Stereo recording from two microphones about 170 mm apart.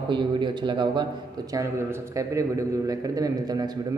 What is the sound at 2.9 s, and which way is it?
Speech, 20° right (ahead or behind).